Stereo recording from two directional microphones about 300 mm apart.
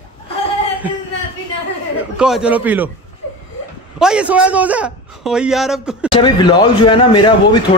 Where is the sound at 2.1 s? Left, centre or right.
Centre.